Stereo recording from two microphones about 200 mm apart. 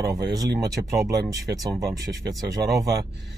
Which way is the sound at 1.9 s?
60° right (ahead or behind).